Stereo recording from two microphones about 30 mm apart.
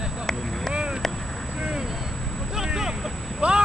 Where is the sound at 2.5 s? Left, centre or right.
Centre.